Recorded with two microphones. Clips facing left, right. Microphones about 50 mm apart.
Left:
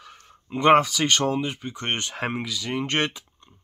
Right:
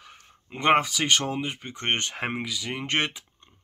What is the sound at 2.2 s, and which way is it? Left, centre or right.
Speech, centre.